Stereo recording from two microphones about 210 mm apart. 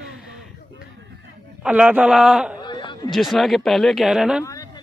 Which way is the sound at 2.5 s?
20° left (ahead or behind).